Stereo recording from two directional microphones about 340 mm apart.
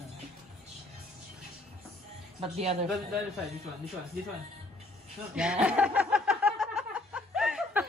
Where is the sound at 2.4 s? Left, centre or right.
Centre.